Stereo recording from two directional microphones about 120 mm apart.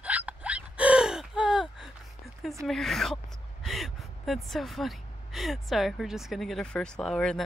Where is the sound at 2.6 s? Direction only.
Centre (ahead or behind).